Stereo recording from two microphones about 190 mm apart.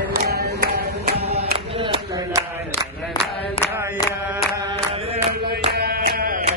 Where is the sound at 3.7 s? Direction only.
15° right (ahead or behind).